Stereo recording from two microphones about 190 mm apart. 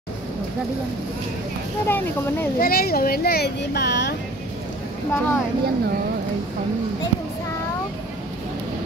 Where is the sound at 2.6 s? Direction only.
55° left (ahead or behind).